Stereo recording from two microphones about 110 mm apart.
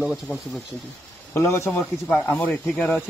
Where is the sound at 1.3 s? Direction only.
25° left (ahead or behind).